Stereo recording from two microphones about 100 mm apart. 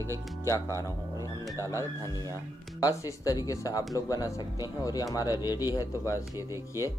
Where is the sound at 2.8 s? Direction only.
35° left (ahead or behind).